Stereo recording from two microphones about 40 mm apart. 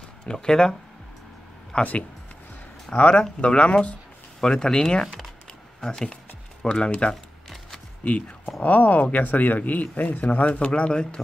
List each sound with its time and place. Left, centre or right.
0.2 s speech: centre
1.7 s speech: left
3.0 s speech: left
4.4 s speech: centre
8.0 s speech: left